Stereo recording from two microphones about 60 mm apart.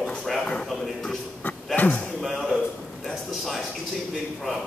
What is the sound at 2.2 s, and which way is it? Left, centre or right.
Speech, centre.